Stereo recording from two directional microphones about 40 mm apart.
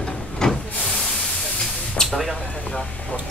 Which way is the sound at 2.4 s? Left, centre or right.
Left.